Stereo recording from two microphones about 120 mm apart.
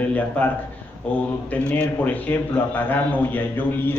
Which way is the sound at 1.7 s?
15° left (ahead or behind).